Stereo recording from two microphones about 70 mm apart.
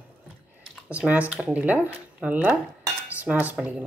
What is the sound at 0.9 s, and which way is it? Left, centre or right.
Speech, right.